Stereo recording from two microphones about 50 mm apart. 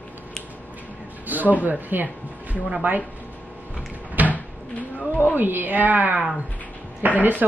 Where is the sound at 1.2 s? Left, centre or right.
Right.